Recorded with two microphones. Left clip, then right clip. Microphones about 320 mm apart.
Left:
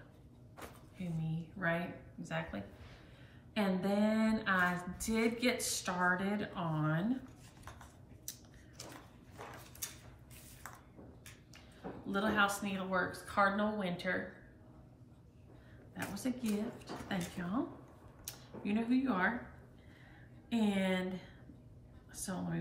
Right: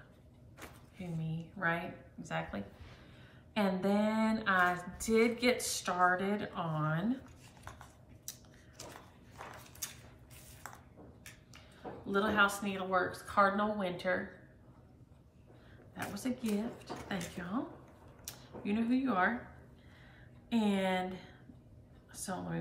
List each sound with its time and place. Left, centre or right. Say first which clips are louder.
2.2 s speech: right 2 dB; centre
8.3 s a sound: right 1 dB; centre
10.6 s a sound: right 2 dB; centre
12.1 s speech: right 3 dB; centre
15.9 s speech: right 1 dB; centre
20.4 s a woman's voice: right 2 dB; centre